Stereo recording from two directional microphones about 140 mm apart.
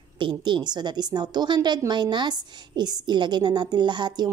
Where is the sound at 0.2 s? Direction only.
35° right (ahead or behind).